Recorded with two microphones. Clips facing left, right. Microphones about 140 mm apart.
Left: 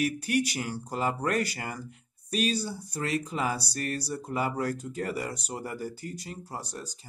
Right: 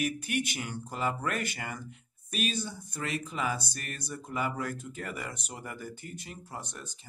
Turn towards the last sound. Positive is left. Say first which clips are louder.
# left 4 dB
turn(degrees=35)  # may be behind; listen again after turning